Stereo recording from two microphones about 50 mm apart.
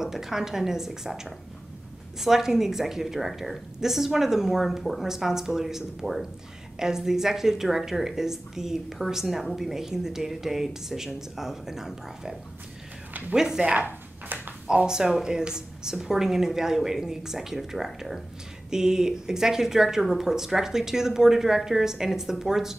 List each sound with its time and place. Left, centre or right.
0.0 s speech: centre
13.7 s a sound: right
14.7 s speech: centre